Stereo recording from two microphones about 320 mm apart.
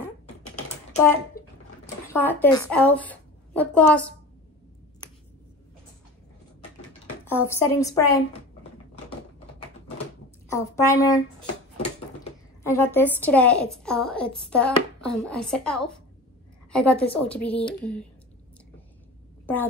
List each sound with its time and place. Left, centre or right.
1.4 s a sound: left
2.1 s a woman's voice: centre
7.2 s a woman's voice: centre
10.5 s a woman's voice: centre
12.6 s a woman's voice: centre
19.4 s speech: centre